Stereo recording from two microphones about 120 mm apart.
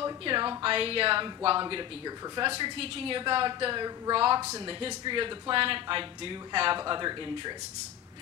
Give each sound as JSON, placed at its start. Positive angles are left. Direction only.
{"t": 0.0, "sound": "speech", "side_deg": -45}
{"t": 4.4, "sound": "speech", "side_deg": -25}
{"t": 4.6, "sound": "speech", "side_deg": -45}